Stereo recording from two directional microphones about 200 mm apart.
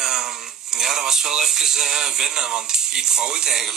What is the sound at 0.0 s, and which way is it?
Speech, centre (ahead or behind).